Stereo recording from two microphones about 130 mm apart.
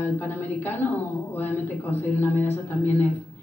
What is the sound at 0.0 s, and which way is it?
Speech, 15° left (ahead or behind).